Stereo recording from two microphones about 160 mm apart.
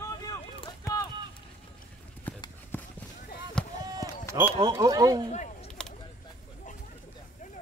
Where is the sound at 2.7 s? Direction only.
15° left (ahead or behind).